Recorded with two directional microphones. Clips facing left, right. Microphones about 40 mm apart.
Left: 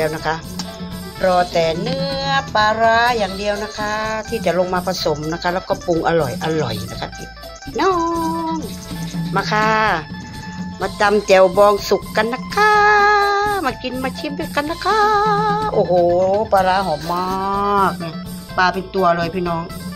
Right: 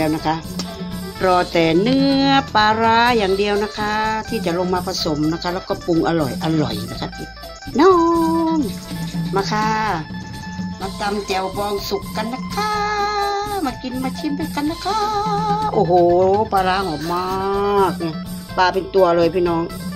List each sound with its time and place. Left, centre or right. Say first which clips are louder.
0.0 s livestock: right 1 dB; centre
1.2 s music: even; centre
4.1 s livestock: left 2 dB; centre
5.1 s speech: right 3 dB; centre
5.9 s livestock: even; centre
7.7 s speech: right 5 dB; centre
8.0 s speech: right 4 dB; centre
8.3 s music: right 4 dB; centre
9.3 s music: left 3 dB; left
9.8 s speech: left 4 dB; left
11.5 s music: left 9 dB; left
15.6 s music: even; centre
15.9 s livestock: right 2 dB; centre